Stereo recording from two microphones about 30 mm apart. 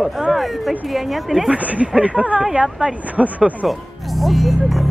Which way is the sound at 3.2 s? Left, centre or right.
Right.